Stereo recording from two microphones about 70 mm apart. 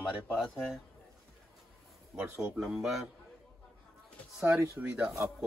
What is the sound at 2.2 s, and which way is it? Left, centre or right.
Speech, right.